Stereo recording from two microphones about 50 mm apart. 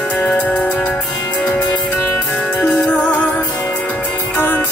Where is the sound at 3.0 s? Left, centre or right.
Left.